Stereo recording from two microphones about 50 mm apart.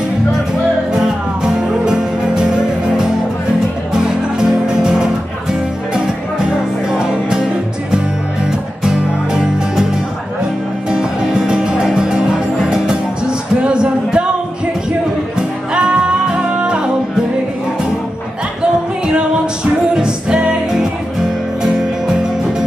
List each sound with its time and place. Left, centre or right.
0.9 s music: centre
8.5 s music: centre
10.9 s music: centre
13.6 s a sound: centre
15.3 s music: centre
18.6 s music: right